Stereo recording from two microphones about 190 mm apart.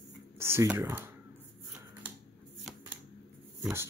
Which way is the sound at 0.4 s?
10° right (ahead or behind).